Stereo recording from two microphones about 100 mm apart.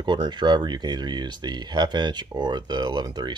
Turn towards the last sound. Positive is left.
turn(degrees=-45)  # may be behind; listen again after turning